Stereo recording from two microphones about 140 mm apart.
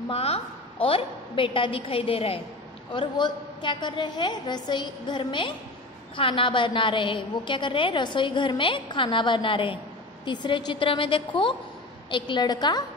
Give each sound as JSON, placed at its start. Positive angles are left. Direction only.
{"t": 0.1, "sound": "a woman's voice", "side_deg": 45}